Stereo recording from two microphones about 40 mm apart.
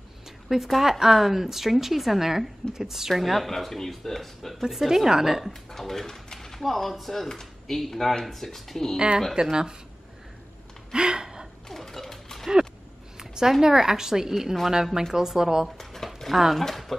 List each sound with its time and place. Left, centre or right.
0.5 s a woman's voice: centre
4.6 s a woman's voice: centre
5.5 s speech: centre
8.9 s speech: right
10.9 s gasp: right
11.7 s a sound: centre
13.2 s a woman's voice: centre
15.8 s a sound: centre
16.5 s speech: centre